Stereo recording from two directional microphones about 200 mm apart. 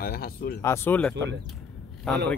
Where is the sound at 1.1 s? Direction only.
60° right (ahead or behind).